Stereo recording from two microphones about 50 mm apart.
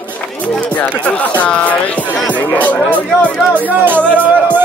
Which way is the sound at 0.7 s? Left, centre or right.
Left.